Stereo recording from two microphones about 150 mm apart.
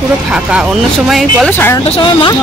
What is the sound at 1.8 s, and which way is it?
Speech, 35° left (ahead or behind).